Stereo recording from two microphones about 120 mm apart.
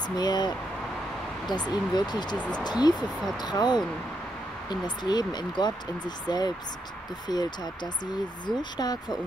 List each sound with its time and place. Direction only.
0.1 s speech: 35° left (ahead or behind)
1.5 s speech: 35° left (ahead or behind)
2.3 s speech: 10° left (ahead or behind)
2.6 s speech: 35° left (ahead or behind)